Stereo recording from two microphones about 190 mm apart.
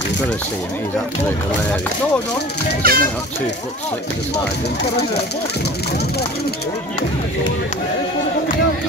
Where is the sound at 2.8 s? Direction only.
50° right (ahead or behind).